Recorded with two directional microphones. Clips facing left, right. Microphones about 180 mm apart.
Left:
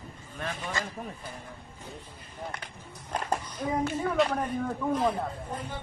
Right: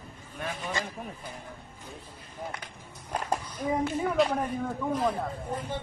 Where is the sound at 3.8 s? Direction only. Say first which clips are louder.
Even; 5° right (ahead or behind).